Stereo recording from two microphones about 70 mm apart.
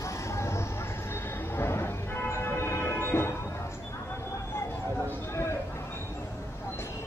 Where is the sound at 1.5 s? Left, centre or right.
Left.